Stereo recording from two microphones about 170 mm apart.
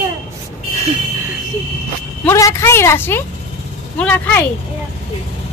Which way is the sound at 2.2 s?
15° left (ahead or behind).